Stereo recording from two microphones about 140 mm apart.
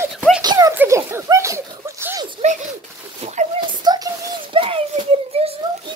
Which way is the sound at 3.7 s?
30° right (ahead or behind).